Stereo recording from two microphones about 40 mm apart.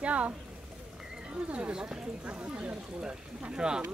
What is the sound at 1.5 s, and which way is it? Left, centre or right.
Speech, right.